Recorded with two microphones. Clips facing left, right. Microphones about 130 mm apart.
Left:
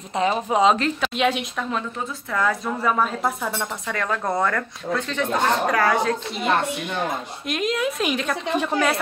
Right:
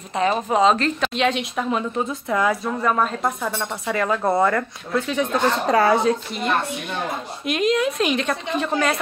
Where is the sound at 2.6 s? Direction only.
5° left (ahead or behind).